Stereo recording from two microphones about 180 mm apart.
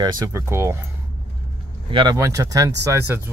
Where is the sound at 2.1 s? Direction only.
15° right (ahead or behind).